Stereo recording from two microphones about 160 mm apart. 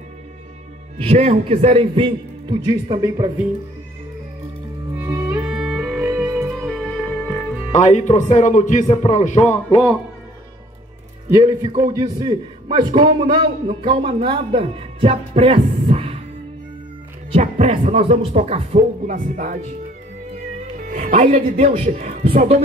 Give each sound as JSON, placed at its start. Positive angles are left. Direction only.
{"t": 0.9, "sound": "a man's voice", "side_deg": -40}
{"t": 4.9, "sound": "music", "side_deg": -20}
{"t": 5.4, "sound": "music", "side_deg": -5}
{"t": 7.7, "sound": "speech", "side_deg": 45}
{"t": 11.2, "sound": "a man's voice", "side_deg": -20}
{"t": 17.3, "sound": "a man's voice", "side_deg": -45}
{"t": 20.7, "sound": "speech", "side_deg": -55}